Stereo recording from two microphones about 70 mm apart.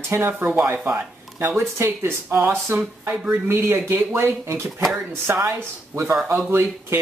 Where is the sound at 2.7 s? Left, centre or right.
Right.